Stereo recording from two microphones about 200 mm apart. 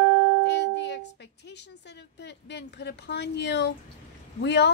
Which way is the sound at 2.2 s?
60° left (ahead or behind).